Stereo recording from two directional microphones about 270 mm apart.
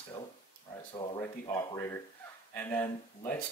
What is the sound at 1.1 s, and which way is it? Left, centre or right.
Speech, centre.